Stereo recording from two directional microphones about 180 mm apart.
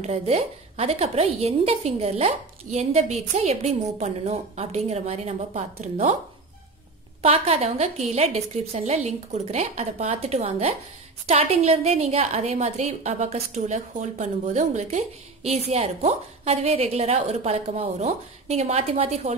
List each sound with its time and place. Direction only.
0.0 s a woman's voice: 35° right (ahead or behind)
7.2 s a woman's voice: 35° right (ahead or behind)